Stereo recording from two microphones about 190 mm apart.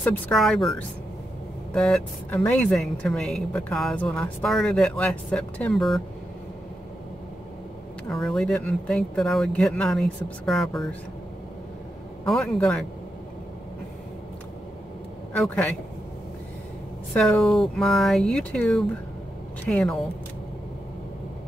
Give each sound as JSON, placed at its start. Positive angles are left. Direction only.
{"t": 0.0, "sound": "a woman's voice", "side_deg": 0}
{"t": 8.1, "sound": "a woman's voice", "side_deg": 0}
{"t": 12.3, "sound": "a woman's voice", "side_deg": 0}
{"t": 15.3, "sound": "a woman's voice", "side_deg": 5}
{"t": 17.1, "sound": "a woman's voice", "side_deg": 0}